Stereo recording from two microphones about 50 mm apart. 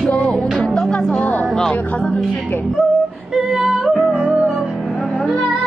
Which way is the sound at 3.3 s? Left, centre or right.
Centre.